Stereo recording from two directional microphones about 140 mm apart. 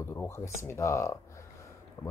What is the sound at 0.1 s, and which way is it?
Speech, 20° left (ahead or behind).